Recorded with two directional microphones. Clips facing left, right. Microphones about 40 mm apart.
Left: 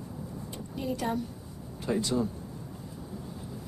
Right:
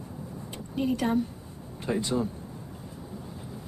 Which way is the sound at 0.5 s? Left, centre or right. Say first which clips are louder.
Right 6 dB; right.